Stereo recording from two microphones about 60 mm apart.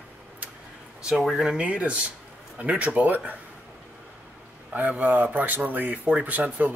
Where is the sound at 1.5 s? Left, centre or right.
Centre.